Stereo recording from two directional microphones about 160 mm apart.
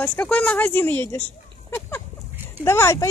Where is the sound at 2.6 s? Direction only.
15° left (ahead or behind).